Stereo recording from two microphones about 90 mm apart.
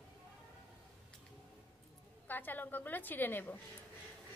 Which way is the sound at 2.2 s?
20° left (ahead or behind).